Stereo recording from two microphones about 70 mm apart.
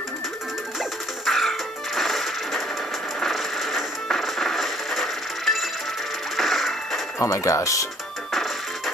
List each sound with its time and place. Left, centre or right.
0.7 s music: centre
7.2 s speech: left
8.3 s music: centre